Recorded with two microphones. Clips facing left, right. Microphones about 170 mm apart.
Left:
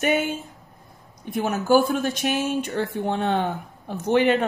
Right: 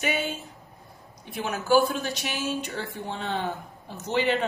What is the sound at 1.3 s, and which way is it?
Speech, 50° left (ahead or behind).